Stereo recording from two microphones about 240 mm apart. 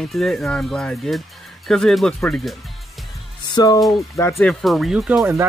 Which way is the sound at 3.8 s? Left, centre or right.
Centre.